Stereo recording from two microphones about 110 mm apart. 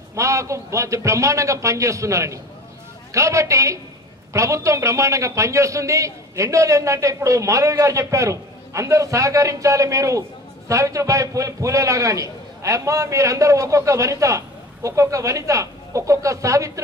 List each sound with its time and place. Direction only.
0.1 s a man's voice: 30° right (ahead or behind)